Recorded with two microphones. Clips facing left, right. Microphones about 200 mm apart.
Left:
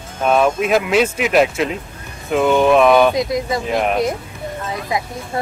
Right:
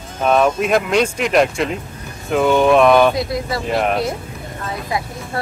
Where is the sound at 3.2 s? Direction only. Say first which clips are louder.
Left 2 dB; 20° left (ahead or behind).